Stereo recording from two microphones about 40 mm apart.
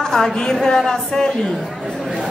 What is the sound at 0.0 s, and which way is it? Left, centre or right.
A woman's voice, centre.